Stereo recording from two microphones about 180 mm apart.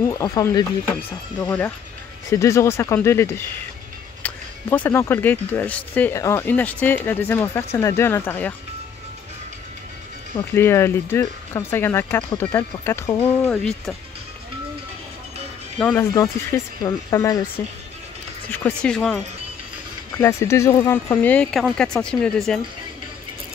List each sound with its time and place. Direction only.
0.1 s speech: 20° left (ahead or behind)
2.2 s speech: 15° left (ahead or behind)
10.5 s speech: 15° left (ahead or behind)
15.8 s speech: 10° left (ahead or behind)
18.5 s speech: 5° left (ahead or behind)
20.2 s speech: 15° left (ahead or behind)